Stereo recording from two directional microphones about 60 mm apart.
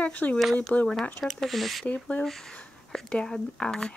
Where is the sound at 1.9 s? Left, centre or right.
Left.